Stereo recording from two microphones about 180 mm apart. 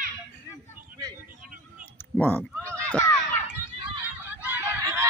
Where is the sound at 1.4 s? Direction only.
50° right (ahead or behind).